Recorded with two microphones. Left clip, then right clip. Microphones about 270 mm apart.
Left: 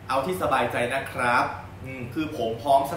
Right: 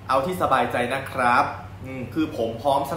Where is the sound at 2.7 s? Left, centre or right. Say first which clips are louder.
Left 2 dB; centre.